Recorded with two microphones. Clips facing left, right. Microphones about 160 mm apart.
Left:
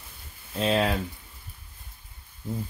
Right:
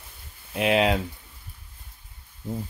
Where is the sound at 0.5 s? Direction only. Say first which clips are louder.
Right 3 dB; 15° right (ahead or behind).